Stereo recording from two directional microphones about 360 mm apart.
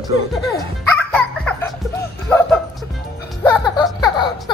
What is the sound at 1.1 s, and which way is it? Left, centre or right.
Laughter, centre.